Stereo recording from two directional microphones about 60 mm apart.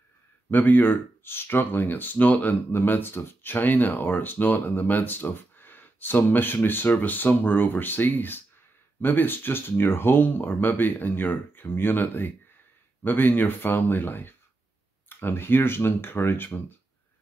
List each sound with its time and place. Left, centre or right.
0.5 s speech: left